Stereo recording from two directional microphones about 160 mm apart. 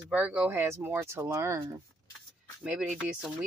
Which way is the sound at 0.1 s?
10° right (ahead or behind).